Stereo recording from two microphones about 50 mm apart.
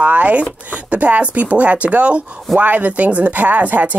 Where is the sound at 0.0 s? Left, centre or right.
Right.